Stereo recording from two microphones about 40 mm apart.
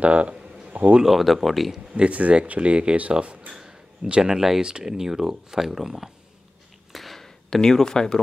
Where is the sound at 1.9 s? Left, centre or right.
Right.